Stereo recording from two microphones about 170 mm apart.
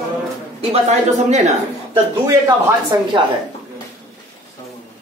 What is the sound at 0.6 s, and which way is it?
Speech, 40° right (ahead or behind).